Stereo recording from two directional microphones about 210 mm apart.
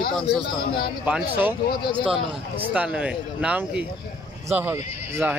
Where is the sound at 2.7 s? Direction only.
5° right (ahead or behind).